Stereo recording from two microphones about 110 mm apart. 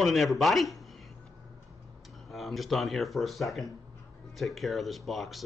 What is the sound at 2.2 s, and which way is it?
Speech, centre (ahead or behind).